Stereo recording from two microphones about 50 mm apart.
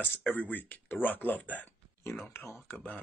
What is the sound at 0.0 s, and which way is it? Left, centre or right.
Speech, left.